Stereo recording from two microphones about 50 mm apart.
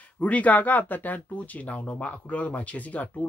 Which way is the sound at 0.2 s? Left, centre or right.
Left.